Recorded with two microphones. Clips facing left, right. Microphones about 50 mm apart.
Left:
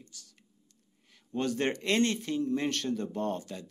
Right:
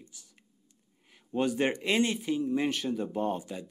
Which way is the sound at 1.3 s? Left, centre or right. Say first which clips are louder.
Right 2 dB; centre.